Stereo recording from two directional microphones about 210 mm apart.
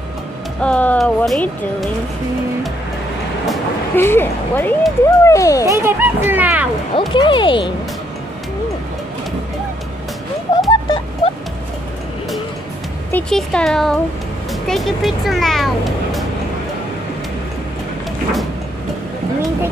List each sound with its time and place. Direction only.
0.6 s speech: 5° left (ahead or behind)
3.4 s speech: 10° left (ahead or behind)
5.7 s speech: 10° right (ahead or behind)
7.2 s speech: 25° left (ahead or behind)
10.7 s music: 20° left (ahead or behind)
13.1 s speech: 5° left (ahead or behind)